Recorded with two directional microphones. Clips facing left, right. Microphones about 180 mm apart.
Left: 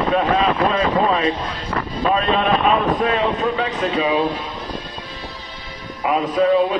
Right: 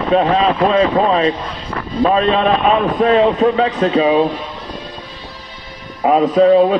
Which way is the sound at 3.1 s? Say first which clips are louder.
Right 7 dB; 35° right (ahead or behind).